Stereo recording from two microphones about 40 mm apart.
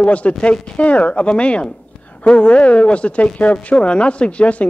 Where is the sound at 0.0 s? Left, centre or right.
Left.